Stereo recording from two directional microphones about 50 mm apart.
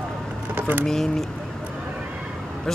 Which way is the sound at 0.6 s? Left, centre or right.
Right.